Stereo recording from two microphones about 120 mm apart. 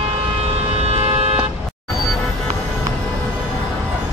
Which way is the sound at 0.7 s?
60° right (ahead or behind).